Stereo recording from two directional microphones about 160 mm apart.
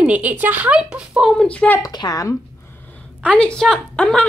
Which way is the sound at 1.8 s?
25° left (ahead or behind).